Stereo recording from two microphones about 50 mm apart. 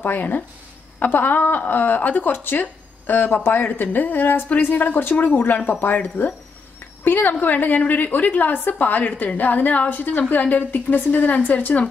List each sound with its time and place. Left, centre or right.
0.0 s a woman's voice: left